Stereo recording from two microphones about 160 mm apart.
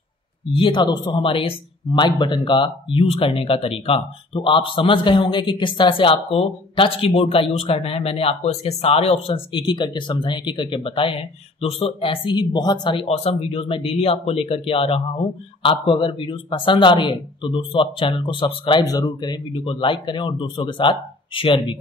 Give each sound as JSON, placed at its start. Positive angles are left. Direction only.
{"t": 0.5, "sound": "speech", "side_deg": 30}